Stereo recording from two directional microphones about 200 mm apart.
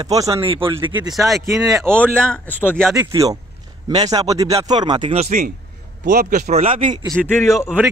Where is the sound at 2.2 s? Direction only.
5° left (ahead or behind).